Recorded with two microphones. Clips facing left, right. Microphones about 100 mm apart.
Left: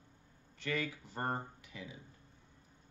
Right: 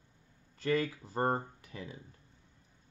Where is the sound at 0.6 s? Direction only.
35° right (ahead or behind).